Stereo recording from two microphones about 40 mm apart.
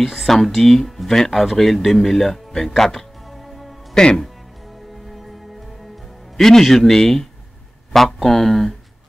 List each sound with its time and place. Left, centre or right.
0.0 s speech: centre
3.9 s speech: centre
5.1 s music: centre
6.3 s a man's voice: centre